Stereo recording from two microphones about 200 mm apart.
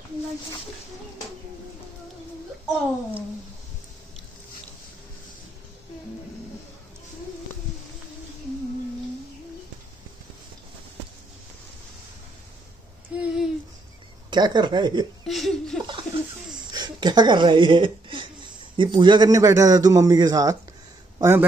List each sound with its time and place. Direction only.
13.1 s a sound: 5° right (ahead or behind)
14.3 s speech: 20° right (ahead or behind)
15.2 s laughter: centre (ahead or behind)
16.7 s a man's voice: 20° right (ahead or behind)